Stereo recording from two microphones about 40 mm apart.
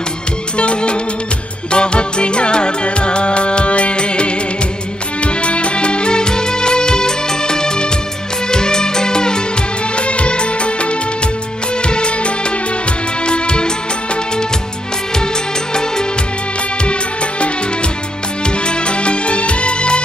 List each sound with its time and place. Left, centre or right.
0.6 s music: left
18.7 s music: left